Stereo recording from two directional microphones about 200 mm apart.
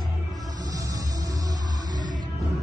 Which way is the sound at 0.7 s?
15° right (ahead or behind).